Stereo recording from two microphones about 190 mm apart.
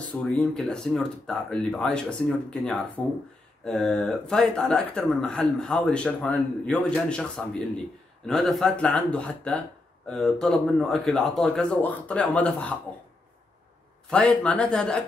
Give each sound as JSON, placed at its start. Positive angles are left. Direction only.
{"t": 0.2, "sound": "speech", "side_deg": 5}
{"t": 14.1, "sound": "speech", "side_deg": 5}